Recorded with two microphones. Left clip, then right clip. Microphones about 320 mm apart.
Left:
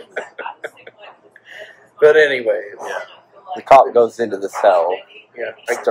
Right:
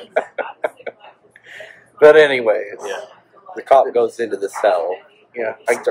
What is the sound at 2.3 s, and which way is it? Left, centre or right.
Speech, centre.